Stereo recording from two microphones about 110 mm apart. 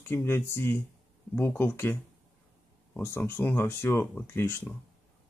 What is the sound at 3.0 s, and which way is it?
Speech, 20° left (ahead or behind).